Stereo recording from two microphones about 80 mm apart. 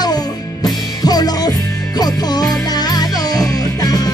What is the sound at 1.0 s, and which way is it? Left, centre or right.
Music, left.